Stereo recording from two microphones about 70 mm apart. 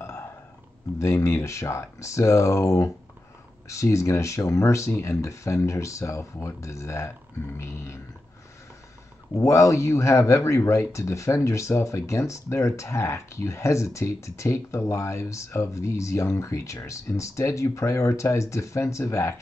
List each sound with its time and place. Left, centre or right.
0.9 s speech: left
9.3 s speech: left